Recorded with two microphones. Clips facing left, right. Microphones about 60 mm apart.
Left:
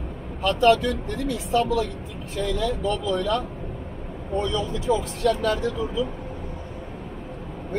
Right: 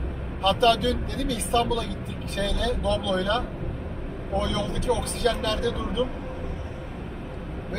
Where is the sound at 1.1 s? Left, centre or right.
Right.